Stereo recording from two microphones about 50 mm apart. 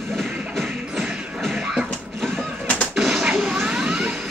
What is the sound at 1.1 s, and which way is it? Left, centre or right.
Music, centre.